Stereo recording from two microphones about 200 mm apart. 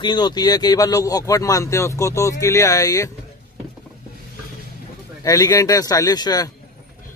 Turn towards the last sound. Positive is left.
turn(degrees=20)  # may be behind; listen again after turning